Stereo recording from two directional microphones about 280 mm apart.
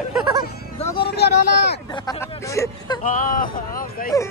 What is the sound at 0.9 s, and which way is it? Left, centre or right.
Speech, left.